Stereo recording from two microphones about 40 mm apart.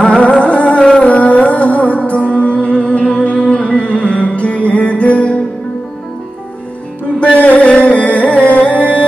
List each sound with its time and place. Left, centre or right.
0.2 s music: left
7.2 s music: left